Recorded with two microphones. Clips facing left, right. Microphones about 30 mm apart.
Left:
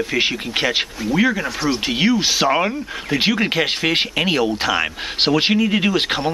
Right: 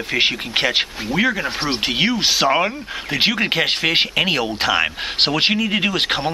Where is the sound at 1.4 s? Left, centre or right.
Right.